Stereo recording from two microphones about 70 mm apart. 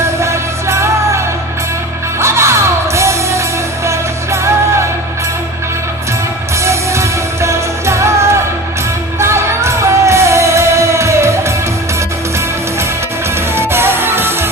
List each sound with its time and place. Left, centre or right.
0.2 s music: right
6.6 s music: right
13.6 s music: right